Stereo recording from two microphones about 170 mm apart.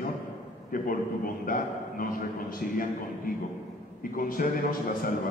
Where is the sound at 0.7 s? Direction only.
55° left (ahead or behind).